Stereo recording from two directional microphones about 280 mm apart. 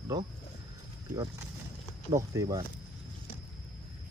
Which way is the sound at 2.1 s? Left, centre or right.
Centre.